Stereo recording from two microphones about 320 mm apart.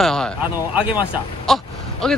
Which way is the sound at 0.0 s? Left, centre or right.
Centre.